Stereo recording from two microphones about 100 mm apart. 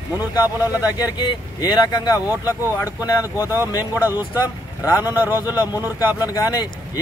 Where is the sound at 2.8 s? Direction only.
35° left (ahead or behind).